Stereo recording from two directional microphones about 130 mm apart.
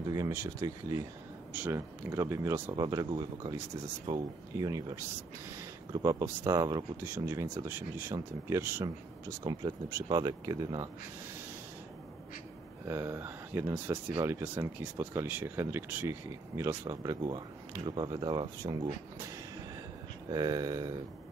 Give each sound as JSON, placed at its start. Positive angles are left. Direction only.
{"t": 0.1, "sound": "speech", "side_deg": -25}
{"t": 2.7, "sound": "speech", "side_deg": -30}
{"t": 9.4, "sound": "speech", "side_deg": -30}
{"t": 12.8, "sound": "speech", "side_deg": -20}
{"t": 20.2, "sound": "speech", "side_deg": -30}